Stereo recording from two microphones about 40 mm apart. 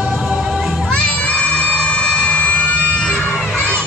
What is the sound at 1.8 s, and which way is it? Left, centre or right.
Emergency vehicle, left.